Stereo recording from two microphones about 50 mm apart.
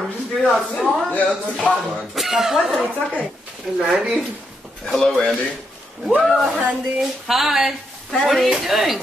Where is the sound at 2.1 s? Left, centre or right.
Centre.